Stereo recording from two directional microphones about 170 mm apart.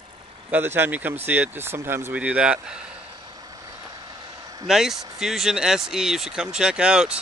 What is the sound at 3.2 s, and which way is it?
Vehicle, 20° right (ahead or behind).